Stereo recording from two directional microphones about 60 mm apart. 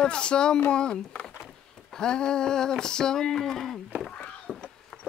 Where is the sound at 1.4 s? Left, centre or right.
Centre.